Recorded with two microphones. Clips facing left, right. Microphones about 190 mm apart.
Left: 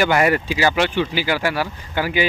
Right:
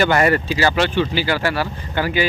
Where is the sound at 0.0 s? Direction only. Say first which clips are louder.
Right 1 dB; 10° left (ahead or behind).